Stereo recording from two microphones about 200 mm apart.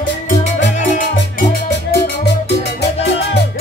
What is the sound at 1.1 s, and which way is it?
Music, 60° left (ahead or behind).